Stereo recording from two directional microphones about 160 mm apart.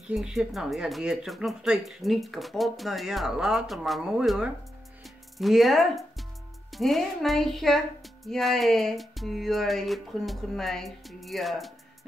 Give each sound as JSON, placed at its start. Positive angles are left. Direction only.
{"t": 0.1, "sound": "speech", "side_deg": -5}
{"t": 5.0, "sound": "music", "side_deg": 0}
{"t": 6.7, "sound": "speech", "side_deg": 0}